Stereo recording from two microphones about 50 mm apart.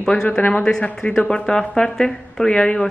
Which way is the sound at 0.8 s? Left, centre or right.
Left.